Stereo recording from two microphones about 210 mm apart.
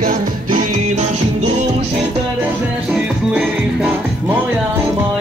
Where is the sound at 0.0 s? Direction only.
40° right (ahead or behind).